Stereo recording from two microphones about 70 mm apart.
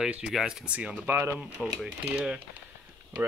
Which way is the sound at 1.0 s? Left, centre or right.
Right.